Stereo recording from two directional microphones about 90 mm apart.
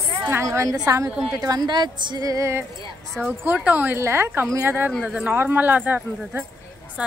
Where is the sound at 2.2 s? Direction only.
35° right (ahead or behind).